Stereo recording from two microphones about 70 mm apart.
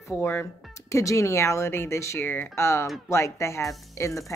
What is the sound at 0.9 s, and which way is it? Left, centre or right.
A woman's voice, left.